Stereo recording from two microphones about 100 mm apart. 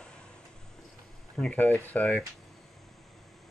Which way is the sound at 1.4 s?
15° left (ahead or behind).